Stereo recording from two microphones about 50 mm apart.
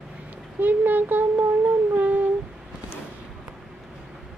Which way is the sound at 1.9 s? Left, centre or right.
Right.